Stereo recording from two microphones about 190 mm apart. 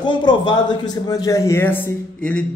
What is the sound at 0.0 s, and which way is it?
A man's voice, 25° left (ahead or behind).